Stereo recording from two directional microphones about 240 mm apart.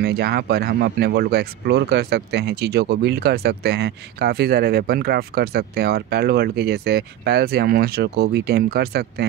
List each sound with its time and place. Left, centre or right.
0.0 s speech: right